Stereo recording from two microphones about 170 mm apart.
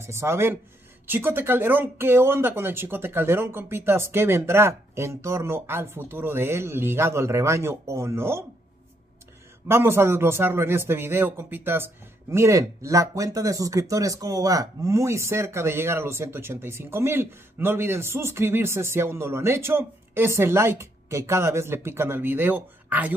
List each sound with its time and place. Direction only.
0.0 s a man's voice: 15° right (ahead or behind)
9.7 s a man's voice: 15° right (ahead or behind)